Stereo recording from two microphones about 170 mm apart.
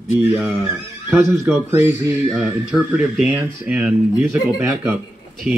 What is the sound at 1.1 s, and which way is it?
Speech, 15° right (ahead or behind).